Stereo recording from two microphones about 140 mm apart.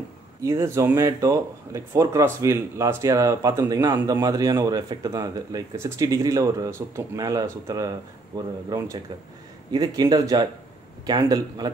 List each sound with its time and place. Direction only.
0.4 s speech: 20° right (ahead or behind)